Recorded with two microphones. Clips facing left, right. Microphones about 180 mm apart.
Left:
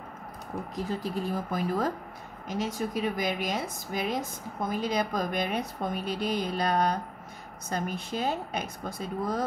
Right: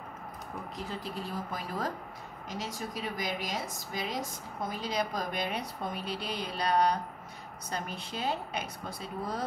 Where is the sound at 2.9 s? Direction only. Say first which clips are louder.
Left 6 dB; 55° left (ahead or behind).